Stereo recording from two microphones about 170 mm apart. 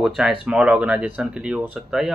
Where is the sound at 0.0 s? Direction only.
5° right (ahead or behind).